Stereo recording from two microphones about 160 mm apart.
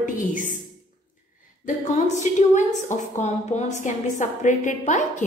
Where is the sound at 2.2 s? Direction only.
50° left (ahead or behind).